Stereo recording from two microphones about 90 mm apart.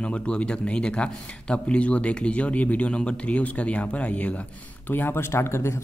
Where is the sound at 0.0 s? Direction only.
10° left (ahead or behind).